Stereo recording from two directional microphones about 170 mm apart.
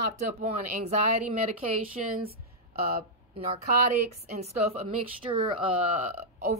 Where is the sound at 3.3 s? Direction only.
40° right (ahead or behind).